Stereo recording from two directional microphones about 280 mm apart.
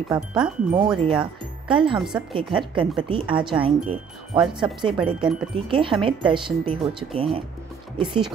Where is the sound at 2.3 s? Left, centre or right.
Centre.